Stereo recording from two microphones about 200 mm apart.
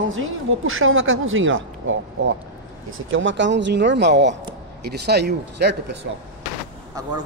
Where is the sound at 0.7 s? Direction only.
90° right; by 5.9 s 55° right (ahead or behind).